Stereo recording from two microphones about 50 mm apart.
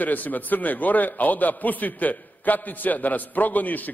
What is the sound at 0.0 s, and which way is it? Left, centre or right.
A man's voice, left.